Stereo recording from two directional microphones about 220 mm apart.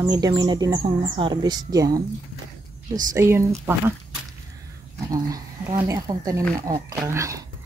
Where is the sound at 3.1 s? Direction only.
10° right (ahead or behind).